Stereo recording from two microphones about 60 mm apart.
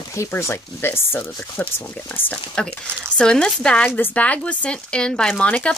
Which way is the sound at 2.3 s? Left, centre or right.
Centre.